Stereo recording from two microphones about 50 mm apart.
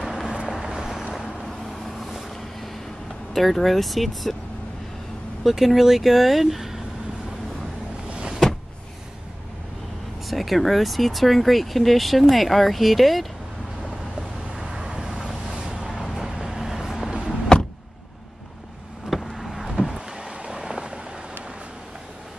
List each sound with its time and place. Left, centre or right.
0.0 s vehicle: centre
3.3 s speech: centre
5.4 s speech: centre
8.1 s power windows: centre
10.2 s speech: centre
14.5 s vehicle: centre
17.5 s power windows: centre
19.0 s vehicle: centre
20.1 s vehicle: centre